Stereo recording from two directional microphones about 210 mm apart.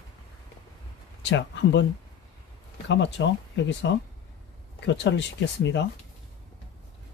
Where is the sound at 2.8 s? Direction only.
60° left (ahead or behind).